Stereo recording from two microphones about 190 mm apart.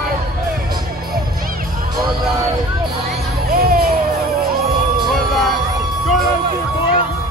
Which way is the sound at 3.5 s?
50° right (ahead or behind).